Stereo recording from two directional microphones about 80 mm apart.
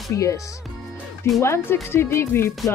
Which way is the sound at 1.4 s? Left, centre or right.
Left.